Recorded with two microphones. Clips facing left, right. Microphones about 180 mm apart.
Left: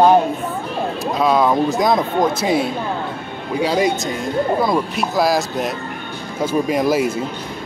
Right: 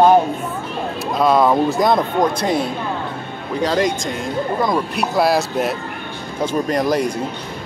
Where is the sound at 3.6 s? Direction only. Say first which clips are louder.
Even; 5° left (ahead or behind).